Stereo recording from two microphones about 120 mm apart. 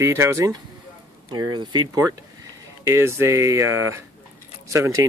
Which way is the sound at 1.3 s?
40° right (ahead or behind).